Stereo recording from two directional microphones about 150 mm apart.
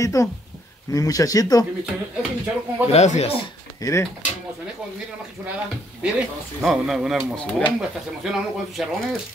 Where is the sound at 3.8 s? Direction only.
20° left (ahead or behind).